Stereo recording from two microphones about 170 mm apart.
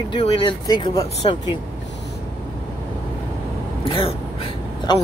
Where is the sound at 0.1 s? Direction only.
25° left (ahead or behind).